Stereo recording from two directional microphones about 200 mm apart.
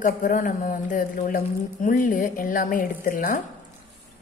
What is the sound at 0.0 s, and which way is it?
Speech, 40° left (ahead or behind).